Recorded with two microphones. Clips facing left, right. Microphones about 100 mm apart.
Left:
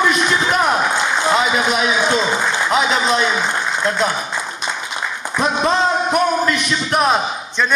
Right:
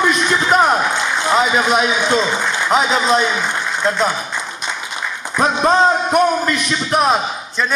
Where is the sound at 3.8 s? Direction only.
Centre (ahead or behind).